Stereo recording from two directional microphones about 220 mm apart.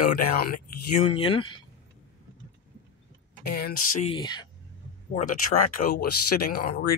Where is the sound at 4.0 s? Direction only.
20° left (ahead or behind).